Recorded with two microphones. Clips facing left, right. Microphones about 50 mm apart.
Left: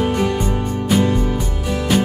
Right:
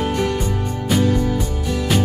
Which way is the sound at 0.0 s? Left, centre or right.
Centre.